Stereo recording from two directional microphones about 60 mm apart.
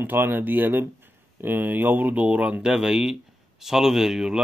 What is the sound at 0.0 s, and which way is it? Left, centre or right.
Speech, right.